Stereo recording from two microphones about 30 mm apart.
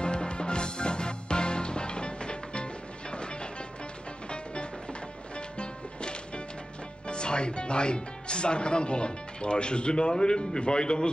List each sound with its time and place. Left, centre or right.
0.0 s music: left
5.6 s music: left
7.1 s speech: left